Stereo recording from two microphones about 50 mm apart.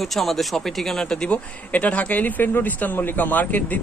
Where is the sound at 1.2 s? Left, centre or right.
Left.